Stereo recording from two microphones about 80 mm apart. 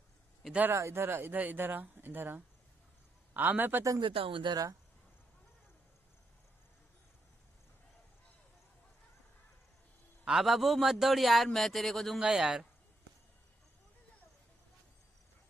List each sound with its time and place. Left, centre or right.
0.7 s speech: right
4.0 s speech: right
10.2 s a man's voice: centre
12.2 s a man's voice: centre